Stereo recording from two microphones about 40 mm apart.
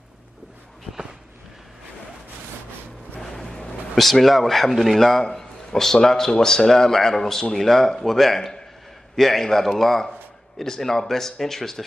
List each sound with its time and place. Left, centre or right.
3.2 s a man's voice: centre